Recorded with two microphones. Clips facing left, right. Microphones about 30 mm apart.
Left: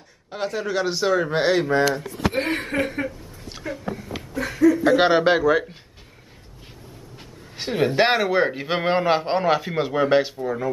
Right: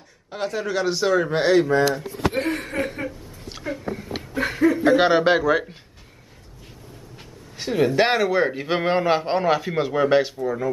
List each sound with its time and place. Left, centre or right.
0.3 s a man's voice: centre
1.7 s speech: left
2.3 s a sound: left
3.5 s speech: centre
4.4 s speech: right
4.9 s a man's voice: centre
7.5 s a man's voice: centre